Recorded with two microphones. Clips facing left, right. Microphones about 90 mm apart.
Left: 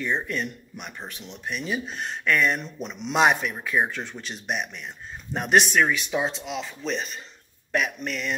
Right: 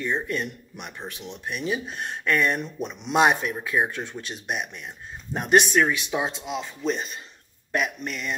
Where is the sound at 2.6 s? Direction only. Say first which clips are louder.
Right 2 dB; 5° right (ahead or behind).